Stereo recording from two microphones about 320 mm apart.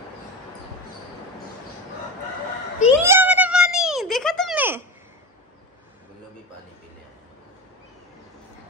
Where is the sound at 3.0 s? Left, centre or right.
Centre.